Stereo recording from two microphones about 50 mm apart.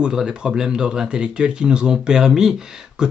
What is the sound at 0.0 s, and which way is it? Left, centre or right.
Speech, centre.